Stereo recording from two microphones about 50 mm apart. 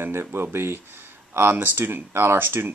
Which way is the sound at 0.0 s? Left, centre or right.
Right.